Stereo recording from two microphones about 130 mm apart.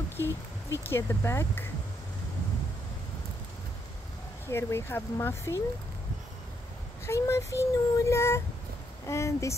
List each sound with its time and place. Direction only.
0.2 s speech: 20° left (ahead or behind)
4.5 s child singing: 20° left (ahead or behind)
7.1 s child singing: 20° left (ahead or behind)